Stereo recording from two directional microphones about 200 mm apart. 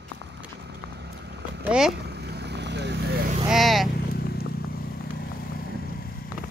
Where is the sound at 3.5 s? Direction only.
Centre (ahead or behind).